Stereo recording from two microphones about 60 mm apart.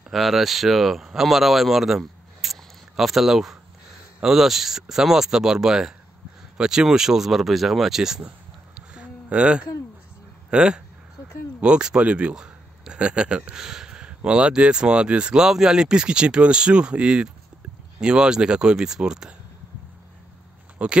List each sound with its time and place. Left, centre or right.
0.1 s speech: centre
8.7 s a sound: centre
10.5 s speech: centre
20.8 s speech: centre